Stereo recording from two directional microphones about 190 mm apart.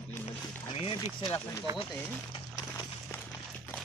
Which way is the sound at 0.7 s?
25° left (ahead or behind).